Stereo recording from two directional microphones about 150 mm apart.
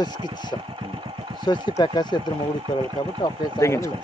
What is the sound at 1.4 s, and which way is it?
Speech, 30° left (ahead or behind).